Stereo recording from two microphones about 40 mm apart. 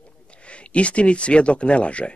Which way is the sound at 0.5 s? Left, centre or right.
Left.